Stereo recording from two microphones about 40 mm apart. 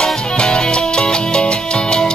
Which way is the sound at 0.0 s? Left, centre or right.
Left.